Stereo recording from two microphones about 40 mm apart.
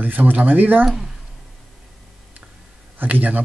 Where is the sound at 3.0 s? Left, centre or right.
Right.